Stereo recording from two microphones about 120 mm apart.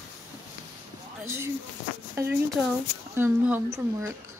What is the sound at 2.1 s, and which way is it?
Speech, 15° right (ahead or behind).